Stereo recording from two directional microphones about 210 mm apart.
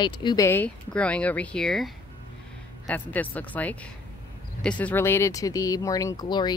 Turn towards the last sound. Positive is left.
turn(degrees=20)  # may be behind; listen again after turning